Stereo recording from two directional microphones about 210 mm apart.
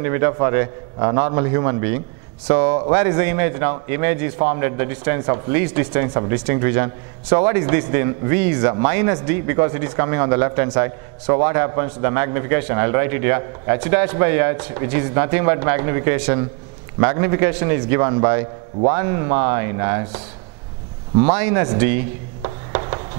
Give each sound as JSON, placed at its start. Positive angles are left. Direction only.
{"t": 0.0, "sound": "a man's voice", "side_deg": -15}
{"t": 21.2, "sound": "a man's voice", "side_deg": -10}
{"t": 22.4, "sound": "a sound", "side_deg": -25}